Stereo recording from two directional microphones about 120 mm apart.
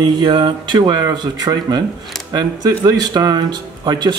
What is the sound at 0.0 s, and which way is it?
Speech, 40° right (ahead or behind).